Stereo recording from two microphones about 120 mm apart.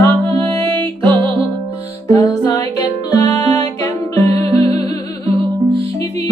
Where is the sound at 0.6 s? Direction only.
45° right (ahead or behind).